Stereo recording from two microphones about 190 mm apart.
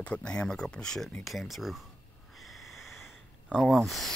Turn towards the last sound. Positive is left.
turn(degrees=0)  # may be behind; listen again after turning